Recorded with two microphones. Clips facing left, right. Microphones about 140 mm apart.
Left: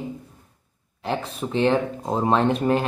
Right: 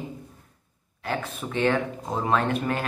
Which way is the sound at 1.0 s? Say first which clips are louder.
Left 3 dB; 30° left (ahead or behind).